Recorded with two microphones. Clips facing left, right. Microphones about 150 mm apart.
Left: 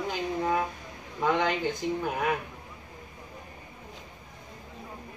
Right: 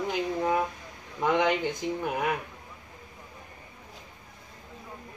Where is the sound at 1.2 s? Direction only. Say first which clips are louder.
Right 2 dB; 15° right (ahead or behind).